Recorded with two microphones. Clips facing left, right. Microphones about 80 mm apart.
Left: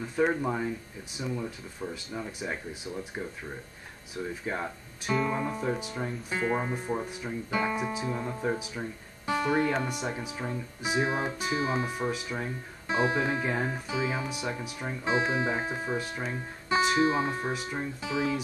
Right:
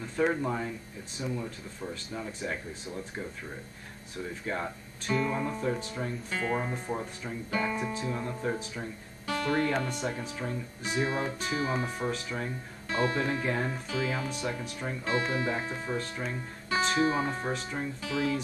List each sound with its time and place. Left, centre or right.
0.1 s speech: centre
16.6 s guitar: left
16.9 s speech: centre